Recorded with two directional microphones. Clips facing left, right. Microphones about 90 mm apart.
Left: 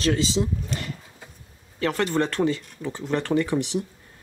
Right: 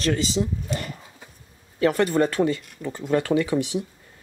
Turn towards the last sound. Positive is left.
turn(degrees=-5)  # may be behind; listen again after turning